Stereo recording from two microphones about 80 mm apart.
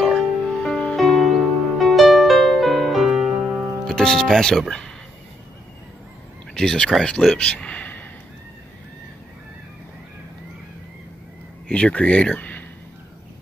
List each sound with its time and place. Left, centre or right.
0.0 s music: centre
3.8 s speech: centre
6.5 s speech: centre
11.6 s speech: centre